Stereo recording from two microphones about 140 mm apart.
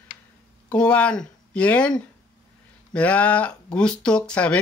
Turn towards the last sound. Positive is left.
turn(degrees=10)  # may be behind; listen again after turning